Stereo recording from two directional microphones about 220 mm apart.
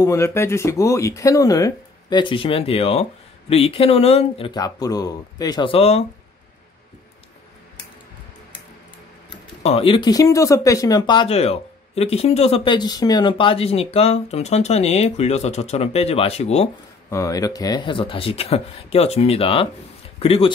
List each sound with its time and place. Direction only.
0.0 s speech: 15° left (ahead or behind); by 6.0 s 30° left (ahead or behind)
9.3 s speech: 25° left (ahead or behind)
17.1 s speech: 15° left (ahead or behind)